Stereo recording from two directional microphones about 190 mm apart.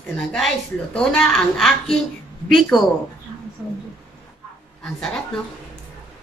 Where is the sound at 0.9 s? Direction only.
Centre (ahead or behind).